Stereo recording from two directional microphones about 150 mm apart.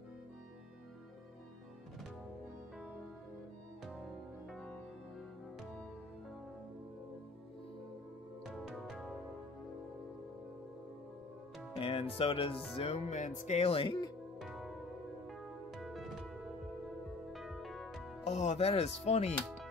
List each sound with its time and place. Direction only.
4.5 s music: 5° left (ahead or behind)
8.5 s music: centre (ahead or behind)
11.8 s speech: 40° left (ahead or behind)
14.4 s music: centre (ahead or behind)
17.3 s music: centre (ahead or behind)
18.2 s speech: 50° left (ahead or behind)